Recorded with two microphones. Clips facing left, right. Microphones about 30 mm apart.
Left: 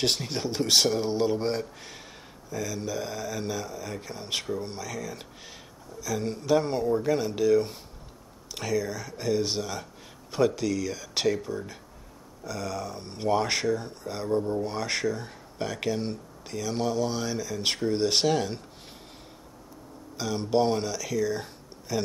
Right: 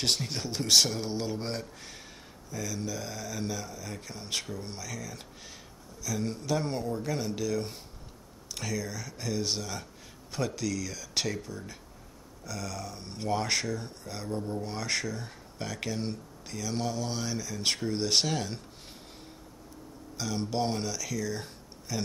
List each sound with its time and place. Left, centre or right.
0.0 s speech: centre
12.9 s speech: centre
20.2 s speech: centre
21.4 s a sound: centre